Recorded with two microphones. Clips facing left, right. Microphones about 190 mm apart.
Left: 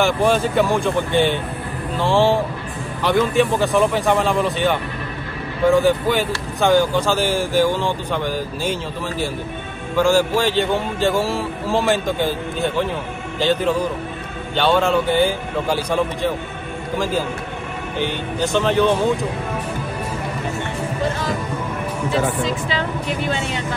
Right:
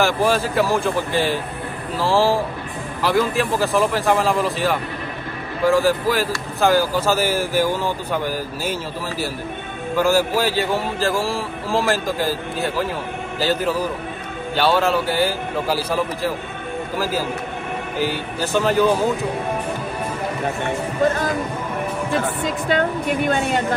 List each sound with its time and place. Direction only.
0.0 s speech: centre (ahead or behind)
9.9 s a man's voice: 5° right (ahead or behind)
17.9 s speech: 5° right (ahead or behind)
22.7 s speech: 50° right (ahead or behind)